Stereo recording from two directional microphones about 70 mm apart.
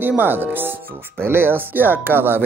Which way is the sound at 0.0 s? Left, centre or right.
Right.